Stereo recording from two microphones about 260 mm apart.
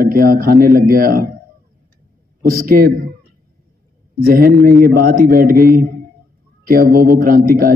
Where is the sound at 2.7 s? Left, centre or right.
Right.